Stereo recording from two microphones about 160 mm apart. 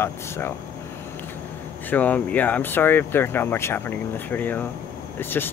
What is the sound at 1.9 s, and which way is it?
Speech, 10° left (ahead or behind).